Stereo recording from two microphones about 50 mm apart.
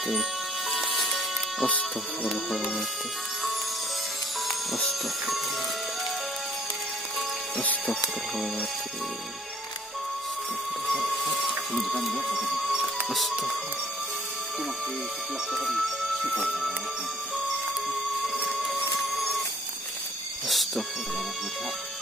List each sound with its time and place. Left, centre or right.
0.7 s music: centre
7.2 s music: left
10.9 s a sound: centre
12.3 s music: centre
15.5 s speech: centre
18.2 s music: centre
19.1 s a sound: centre
20.4 s music: centre